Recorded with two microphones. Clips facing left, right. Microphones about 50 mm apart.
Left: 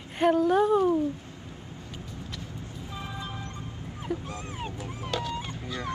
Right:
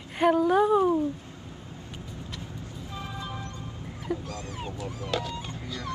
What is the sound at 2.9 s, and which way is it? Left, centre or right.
Vehicle, centre.